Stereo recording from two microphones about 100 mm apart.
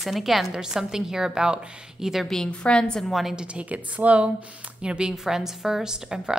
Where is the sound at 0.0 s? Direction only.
Centre (ahead or behind).